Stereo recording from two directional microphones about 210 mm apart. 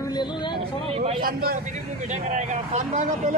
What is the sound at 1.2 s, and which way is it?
A man's voice, 45° right (ahead or behind).